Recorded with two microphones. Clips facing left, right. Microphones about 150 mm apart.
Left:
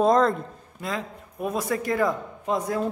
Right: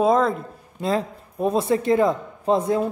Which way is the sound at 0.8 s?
30° right (ahead or behind).